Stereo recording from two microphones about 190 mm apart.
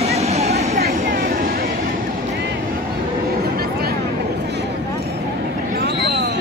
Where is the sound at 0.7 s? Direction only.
55° right (ahead or behind).